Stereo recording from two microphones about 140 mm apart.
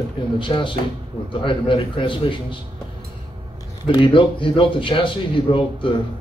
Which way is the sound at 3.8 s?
35° left (ahead or behind).